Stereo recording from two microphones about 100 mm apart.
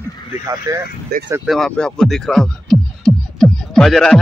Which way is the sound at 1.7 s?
5° left (ahead or behind).